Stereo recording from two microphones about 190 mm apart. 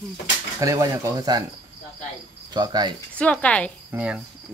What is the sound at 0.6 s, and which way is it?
Speech, 15° right (ahead or behind).